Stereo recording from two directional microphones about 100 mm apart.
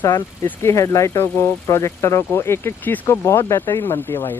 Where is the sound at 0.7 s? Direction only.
30° left (ahead or behind).